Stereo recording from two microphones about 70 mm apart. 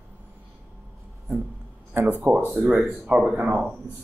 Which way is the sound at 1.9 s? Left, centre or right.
Right.